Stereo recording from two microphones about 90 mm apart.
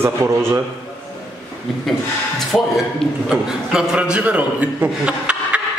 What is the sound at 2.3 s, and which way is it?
A man's voice, centre (ahead or behind).